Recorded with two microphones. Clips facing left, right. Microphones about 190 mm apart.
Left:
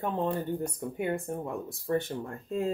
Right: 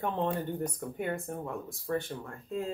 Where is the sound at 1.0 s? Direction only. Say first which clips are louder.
Left 4 dB; 20° left (ahead or behind).